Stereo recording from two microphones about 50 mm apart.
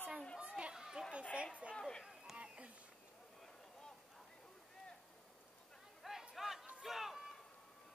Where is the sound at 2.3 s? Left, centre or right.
Right.